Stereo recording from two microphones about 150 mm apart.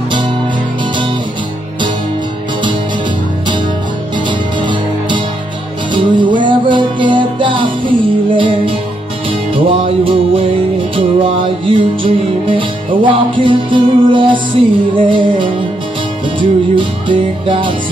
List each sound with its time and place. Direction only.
5.9 s music: 30° right (ahead or behind)